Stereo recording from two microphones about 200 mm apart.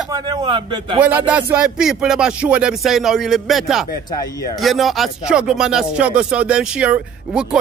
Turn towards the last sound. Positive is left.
turn(degrees=-5)  # may be behind; listen again after turning